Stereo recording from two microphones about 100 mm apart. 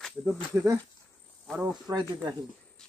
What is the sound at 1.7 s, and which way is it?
Speech, 40° right (ahead or behind).